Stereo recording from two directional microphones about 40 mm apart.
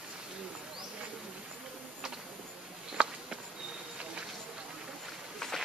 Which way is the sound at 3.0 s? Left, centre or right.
Right.